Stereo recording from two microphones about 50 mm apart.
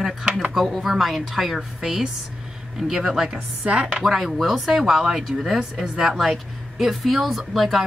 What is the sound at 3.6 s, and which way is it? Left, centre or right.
Chopping, right.